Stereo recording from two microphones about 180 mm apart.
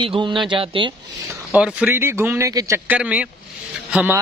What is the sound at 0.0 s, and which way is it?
Speech, 25° right (ahead or behind).